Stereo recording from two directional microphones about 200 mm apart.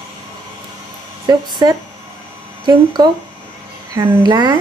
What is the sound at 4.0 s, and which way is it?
Speech, 20° right (ahead or behind).